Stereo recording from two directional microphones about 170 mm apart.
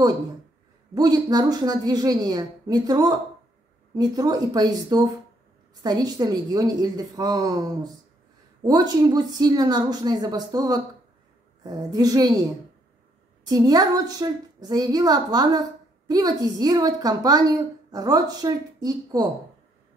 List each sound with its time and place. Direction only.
0.9 s a woman's voice: 20° right (ahead or behind)
13.5 s a woman's voice: 20° right (ahead or behind)